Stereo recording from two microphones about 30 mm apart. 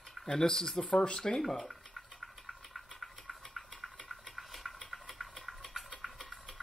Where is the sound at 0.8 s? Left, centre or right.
Left.